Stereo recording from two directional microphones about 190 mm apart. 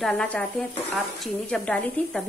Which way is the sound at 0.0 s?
5° left (ahead or behind).